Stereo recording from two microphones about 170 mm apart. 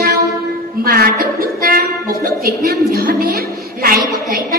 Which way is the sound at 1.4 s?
60° right (ahead or behind).